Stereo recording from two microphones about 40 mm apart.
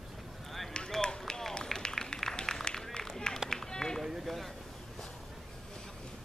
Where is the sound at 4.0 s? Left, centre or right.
Centre.